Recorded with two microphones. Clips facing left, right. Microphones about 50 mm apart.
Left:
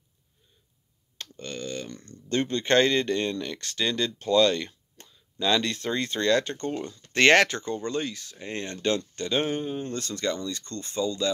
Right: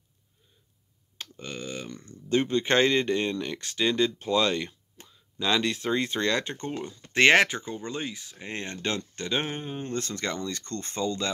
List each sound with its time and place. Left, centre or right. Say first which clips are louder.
1.1 s speech: left 1 dB; centre; by 11.3 s right